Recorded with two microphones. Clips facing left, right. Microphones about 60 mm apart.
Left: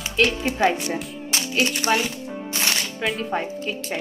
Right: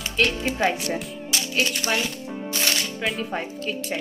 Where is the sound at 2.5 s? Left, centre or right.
Left.